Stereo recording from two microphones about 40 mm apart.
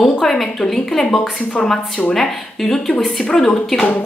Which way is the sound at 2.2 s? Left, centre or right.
Centre.